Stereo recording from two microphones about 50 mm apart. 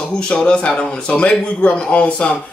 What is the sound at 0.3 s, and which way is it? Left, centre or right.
A man's voice, left.